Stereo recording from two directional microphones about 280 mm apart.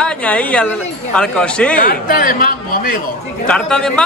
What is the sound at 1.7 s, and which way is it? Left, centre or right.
A man's voice, left.